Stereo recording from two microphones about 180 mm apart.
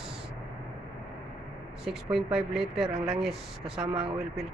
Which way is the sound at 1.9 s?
Centre (ahead or behind).